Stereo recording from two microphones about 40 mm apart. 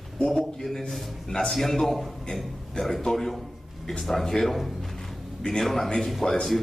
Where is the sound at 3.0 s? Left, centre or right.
Centre.